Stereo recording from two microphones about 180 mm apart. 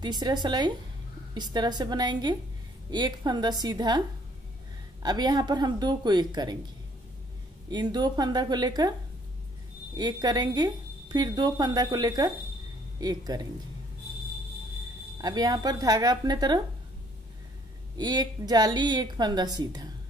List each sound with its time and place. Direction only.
0.0 s a woman's voice: 25° right (ahead or behind)
5.0 s a woman's voice: 20° right (ahead or behind)
7.7 s a woman's voice: 25° right (ahead or behind)
9.9 s a woman's voice: 20° right (ahead or behind)
15.1 s a woman's voice: 20° right (ahead or behind)
17.9 s a woman's voice: 20° right (ahead or behind)